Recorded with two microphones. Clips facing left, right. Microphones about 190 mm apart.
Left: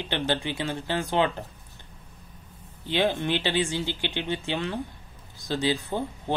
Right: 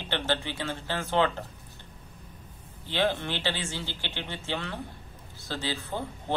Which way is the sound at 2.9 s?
15° left (ahead or behind).